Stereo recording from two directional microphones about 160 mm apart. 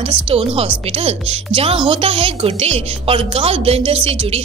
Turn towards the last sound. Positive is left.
turn(degrees=-35)  # may be behind; listen again after turning